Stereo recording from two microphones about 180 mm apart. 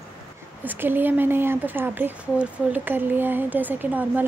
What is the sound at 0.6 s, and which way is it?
Speech, 10° right (ahead or behind).